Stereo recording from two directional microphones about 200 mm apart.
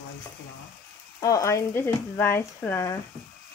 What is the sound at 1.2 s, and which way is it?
Speech, 15° left (ahead or behind).